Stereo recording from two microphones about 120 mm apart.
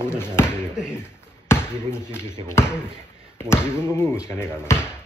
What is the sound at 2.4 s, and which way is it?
Speech, 20° left (ahead or behind).